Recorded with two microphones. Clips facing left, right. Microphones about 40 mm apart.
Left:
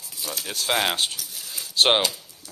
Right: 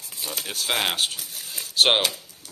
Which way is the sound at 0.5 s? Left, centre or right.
Centre.